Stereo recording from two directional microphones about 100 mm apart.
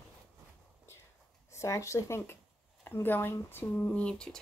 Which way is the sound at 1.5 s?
30° left (ahead or behind).